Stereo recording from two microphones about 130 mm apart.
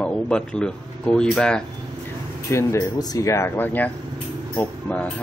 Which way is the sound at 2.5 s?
20° left (ahead or behind).